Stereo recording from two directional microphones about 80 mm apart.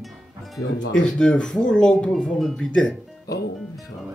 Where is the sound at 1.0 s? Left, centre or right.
Centre.